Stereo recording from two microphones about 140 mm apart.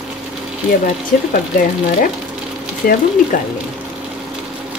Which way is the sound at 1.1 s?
90° left.